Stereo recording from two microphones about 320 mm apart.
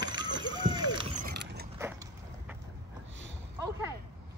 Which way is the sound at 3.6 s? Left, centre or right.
Centre.